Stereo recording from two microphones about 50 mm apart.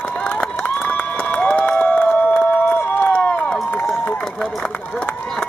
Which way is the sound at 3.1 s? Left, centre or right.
Left.